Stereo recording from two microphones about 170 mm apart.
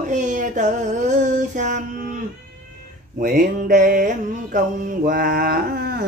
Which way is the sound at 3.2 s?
50° right (ahead or behind).